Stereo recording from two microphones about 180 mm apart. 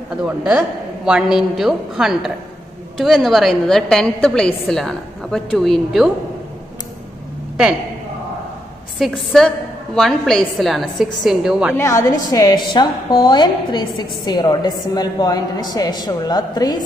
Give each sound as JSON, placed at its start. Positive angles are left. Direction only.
{"t": 0.2, "sound": "a woman's voice", "side_deg": -5}
{"t": 9.0, "sound": "a woman's voice", "side_deg": 0}
{"t": 11.7, "sound": "a woman's voice", "side_deg": 15}